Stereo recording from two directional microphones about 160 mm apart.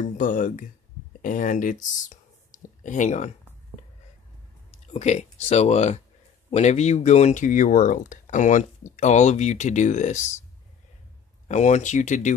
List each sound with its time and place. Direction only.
0.0 s speech: 55° left (ahead or behind)
4.9 s speech: 45° left (ahead or behind)
11.4 s speech: 45° left (ahead or behind)